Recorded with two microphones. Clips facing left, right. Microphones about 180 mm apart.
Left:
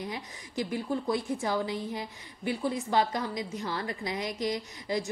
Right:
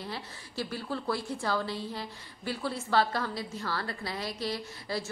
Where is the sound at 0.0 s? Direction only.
15° left (ahead or behind).